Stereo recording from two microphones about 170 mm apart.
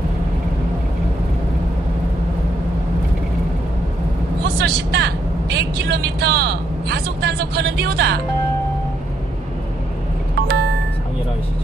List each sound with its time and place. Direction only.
4.6 s speech: 75° right (ahead or behind)